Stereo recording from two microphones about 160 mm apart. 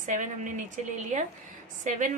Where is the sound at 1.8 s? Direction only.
50° right (ahead or behind).